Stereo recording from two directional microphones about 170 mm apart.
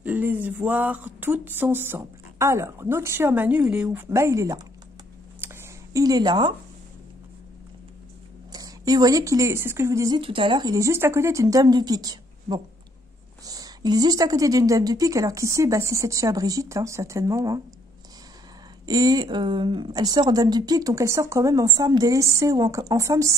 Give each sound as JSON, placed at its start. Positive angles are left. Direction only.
{"t": 0.0, "sound": "speech", "side_deg": -10}
{"t": 5.4, "sound": "a sound", "side_deg": -15}
{"t": 8.5, "sound": "a woman's voice", "side_deg": -20}
{"t": 18.9, "sound": "a woman's voice", "side_deg": -20}